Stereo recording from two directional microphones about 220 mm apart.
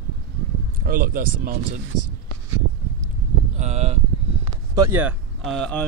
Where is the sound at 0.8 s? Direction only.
40° right (ahead or behind).